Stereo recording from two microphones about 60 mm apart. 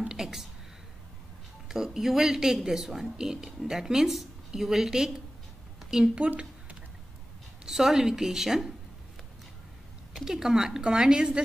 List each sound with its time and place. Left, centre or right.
0.1 s speech: centre
1.7 s a woman's voice: centre
5.8 s a sound: centre
7.6 s a woman's voice: centre
10.1 s a woman's voice: centre